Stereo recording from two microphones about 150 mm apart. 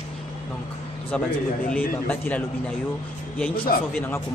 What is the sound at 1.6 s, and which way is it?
Music, 10° left (ahead or behind).